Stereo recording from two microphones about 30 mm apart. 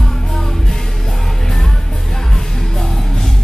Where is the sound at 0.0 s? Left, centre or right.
Centre.